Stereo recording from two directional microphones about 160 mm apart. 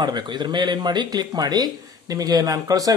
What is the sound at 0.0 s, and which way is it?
Speech, 25° right (ahead or behind).